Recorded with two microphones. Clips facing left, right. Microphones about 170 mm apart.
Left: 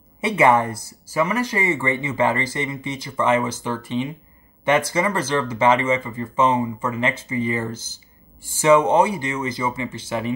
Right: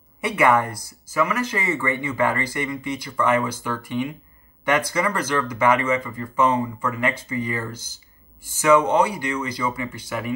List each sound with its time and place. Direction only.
0.2 s speech: 25° left (ahead or behind)
1.2 s speech: 15° left (ahead or behind)
1.7 s speech: 25° left (ahead or behind)
8.5 s speech: 25° left (ahead or behind)